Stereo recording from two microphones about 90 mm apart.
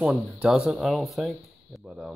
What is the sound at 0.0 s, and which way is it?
Speech, 5° right (ahead or behind).